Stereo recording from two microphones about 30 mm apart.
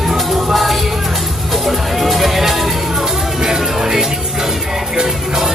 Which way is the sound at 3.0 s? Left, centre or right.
Centre.